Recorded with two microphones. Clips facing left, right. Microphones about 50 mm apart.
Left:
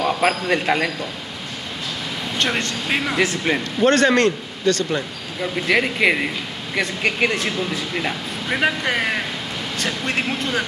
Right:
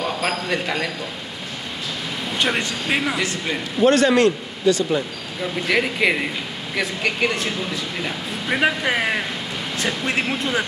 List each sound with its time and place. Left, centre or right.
0.0 s a man's voice: centre
2.3 s a man's voice: centre
3.5 s a man's voice: centre
3.8 s a man's voice: centre
5.4 s a man's voice: centre